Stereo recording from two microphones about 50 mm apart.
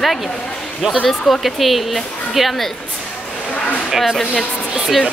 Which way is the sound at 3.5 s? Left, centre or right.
Left.